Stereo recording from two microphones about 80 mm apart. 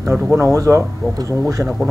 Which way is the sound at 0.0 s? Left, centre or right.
Right.